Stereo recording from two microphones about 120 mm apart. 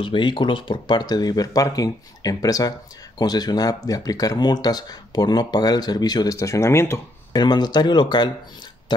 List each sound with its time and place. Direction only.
0.0 s speech: 45° left (ahead or behind); by 7.0 s 20° left (ahead or behind)
7.3 s speech: 35° left (ahead or behind)